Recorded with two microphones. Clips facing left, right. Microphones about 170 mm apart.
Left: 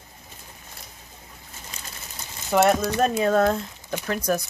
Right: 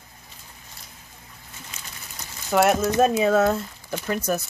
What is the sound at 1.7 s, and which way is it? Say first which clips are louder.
Pigeon: left 2 dB; 35° left (ahead or behind).